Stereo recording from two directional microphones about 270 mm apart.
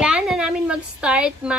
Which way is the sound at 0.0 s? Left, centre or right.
Centre.